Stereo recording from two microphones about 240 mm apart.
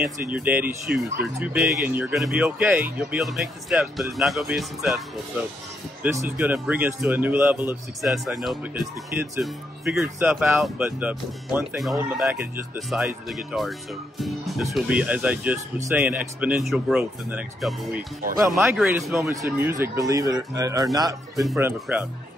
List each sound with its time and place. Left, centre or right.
0.0 s speech: centre
6.0 s speech: centre
18.2 s speech: right
18.6 s speech: centre
21.4 s speech: centre